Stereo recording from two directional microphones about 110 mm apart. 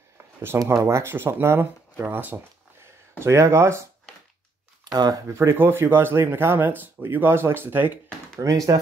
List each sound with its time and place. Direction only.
0.7 s speech: 25° right (ahead or behind)
4.9 s speech: 40° right (ahead or behind)
5.5 s speech: 20° right (ahead or behind)
8.4 s speech: 35° right (ahead or behind)